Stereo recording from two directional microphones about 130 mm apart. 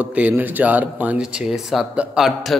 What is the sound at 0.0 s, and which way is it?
A man's voice, 10° right (ahead or behind).